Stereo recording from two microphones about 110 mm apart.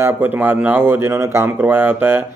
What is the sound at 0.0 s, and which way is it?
Speech, 15° right (ahead or behind).